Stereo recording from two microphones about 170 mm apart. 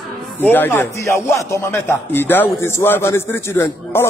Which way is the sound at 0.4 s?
10° left (ahead or behind).